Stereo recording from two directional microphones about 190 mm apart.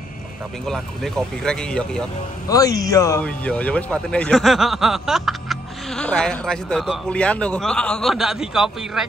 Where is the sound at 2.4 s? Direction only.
20° left (ahead or behind).